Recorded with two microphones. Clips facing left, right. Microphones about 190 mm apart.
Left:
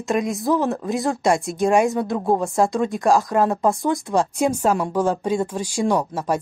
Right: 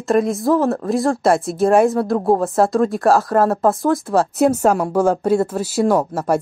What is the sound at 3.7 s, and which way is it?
Speech, centre (ahead or behind).